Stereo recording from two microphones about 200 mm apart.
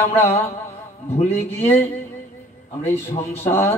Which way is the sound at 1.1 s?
30° left (ahead or behind).